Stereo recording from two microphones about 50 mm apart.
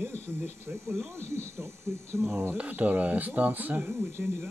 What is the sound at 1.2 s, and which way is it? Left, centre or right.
Speech, right.